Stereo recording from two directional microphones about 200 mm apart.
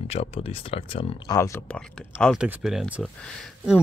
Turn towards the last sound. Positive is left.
turn(degrees=0)  # may be behind; listen again after turning